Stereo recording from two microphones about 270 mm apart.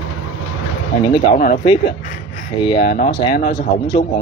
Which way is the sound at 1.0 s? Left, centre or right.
Centre.